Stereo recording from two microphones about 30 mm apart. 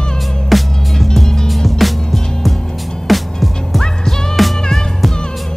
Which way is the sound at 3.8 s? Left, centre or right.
Centre.